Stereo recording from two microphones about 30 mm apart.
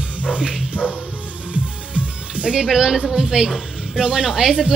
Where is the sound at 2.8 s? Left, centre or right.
Right.